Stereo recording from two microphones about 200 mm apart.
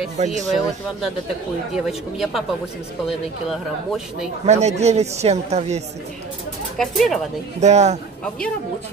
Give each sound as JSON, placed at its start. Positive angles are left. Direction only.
{"t": 0.2, "sound": "a man's voice", "side_deg": -35}
{"t": 0.5, "sound": "speech", "side_deg": 0}
{"t": 4.5, "sound": "a man's voice", "side_deg": -35}
{"t": 6.8, "sound": "speech", "side_deg": 0}
{"t": 7.6, "sound": "a man's voice", "side_deg": -35}